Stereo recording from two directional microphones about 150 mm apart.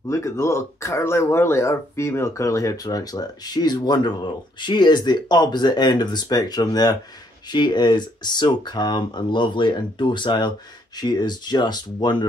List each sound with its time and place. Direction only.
0.1 s speech: 20° left (ahead or behind)